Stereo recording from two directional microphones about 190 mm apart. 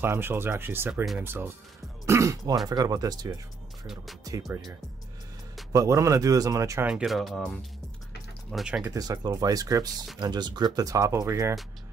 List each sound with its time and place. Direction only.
0.0 s speech: 10° right (ahead or behind)
3.8 s speech: centre (ahead or behind)
4.2 s speech: 20° right (ahead or behind)
5.7 s speech: 15° right (ahead or behind)
6.9 s speech: centre (ahead or behind)
8.9 s speech: 20° right (ahead or behind)